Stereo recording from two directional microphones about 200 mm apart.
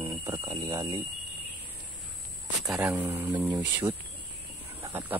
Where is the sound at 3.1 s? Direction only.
15° right (ahead or behind).